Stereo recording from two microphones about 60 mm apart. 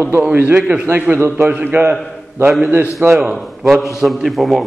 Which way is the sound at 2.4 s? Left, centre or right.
Right.